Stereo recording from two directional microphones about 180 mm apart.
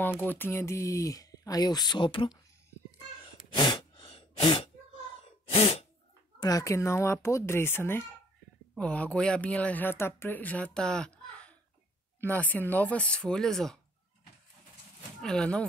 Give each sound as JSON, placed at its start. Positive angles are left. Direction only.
{"t": 0.0, "sound": "speech", "side_deg": 10}
{"t": 3.5, "sound": "a sound", "side_deg": 25}
{"t": 5.2, "sound": "sneeze", "side_deg": 35}
{"t": 6.4, "sound": "speech", "side_deg": 20}
{"t": 15.2, "sound": "speech", "side_deg": 5}